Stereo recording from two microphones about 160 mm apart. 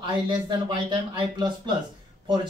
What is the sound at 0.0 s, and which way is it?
Speech, 30° right (ahead or behind).